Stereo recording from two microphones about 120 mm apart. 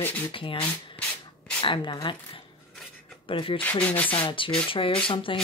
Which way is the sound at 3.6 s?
15° left (ahead or behind).